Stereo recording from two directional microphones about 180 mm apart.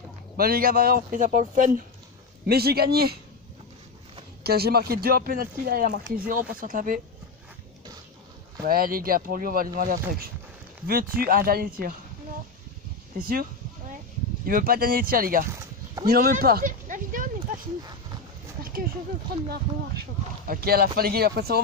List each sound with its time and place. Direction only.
0.4 s speech: 55° right (ahead or behind)
2.4 s speech: 60° right (ahead or behind)
4.4 s speech: 60° right (ahead or behind)
8.6 s speech: 55° right (ahead or behind)
13.2 s speech: 55° right (ahead or behind)
16.1 s a sound: 55° right (ahead or behind)
20.4 s speech: 55° right (ahead or behind)